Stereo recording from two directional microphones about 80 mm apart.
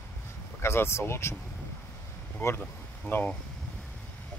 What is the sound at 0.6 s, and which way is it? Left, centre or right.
Speech, left.